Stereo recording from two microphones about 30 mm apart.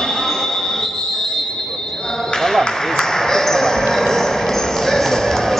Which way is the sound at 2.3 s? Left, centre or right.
Centre.